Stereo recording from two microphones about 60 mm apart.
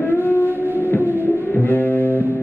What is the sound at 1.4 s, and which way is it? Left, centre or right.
Music, left.